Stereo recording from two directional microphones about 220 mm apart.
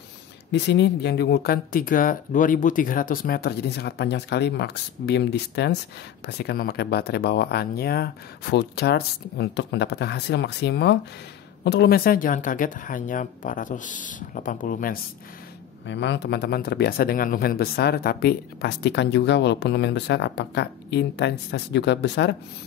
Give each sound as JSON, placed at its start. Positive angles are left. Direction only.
{"t": 0.5, "sound": "speech", "side_deg": 50}
{"t": 15.9, "sound": "speech", "side_deg": 55}